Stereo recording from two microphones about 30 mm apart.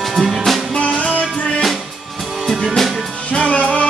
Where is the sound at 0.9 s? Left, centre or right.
Left.